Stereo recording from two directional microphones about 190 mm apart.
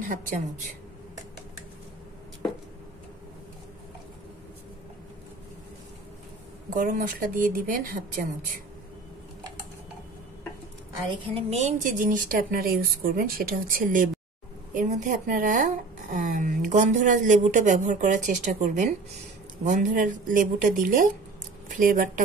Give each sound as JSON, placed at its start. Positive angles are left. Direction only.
{"t": 0.0, "sound": "speech", "side_deg": -45}
{"t": 6.7, "sound": "speech", "side_deg": -45}
{"t": 11.3, "sound": "a woman's voice", "side_deg": -35}